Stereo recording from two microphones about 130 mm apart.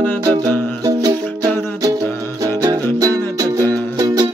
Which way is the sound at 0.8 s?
30° right (ahead or behind).